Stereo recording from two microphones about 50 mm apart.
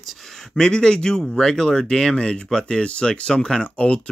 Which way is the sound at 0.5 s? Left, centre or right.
Centre.